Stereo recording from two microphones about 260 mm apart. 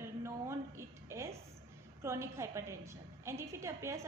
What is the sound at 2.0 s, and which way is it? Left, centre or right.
A woman's voice, centre.